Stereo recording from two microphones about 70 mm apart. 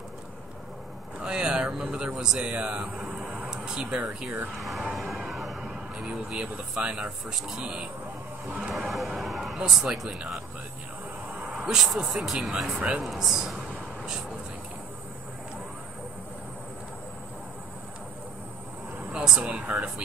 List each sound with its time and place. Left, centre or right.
1.2 s a man's voice: centre
4.6 s speech: centre
4.9 s music: centre
5.6 s speech: centre
11.5 s speech: centre
19.1 s speech: centre